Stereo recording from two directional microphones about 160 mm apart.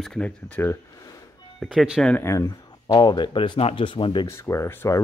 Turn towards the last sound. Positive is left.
turn(degrees=15)  # may be behind; listen again after turning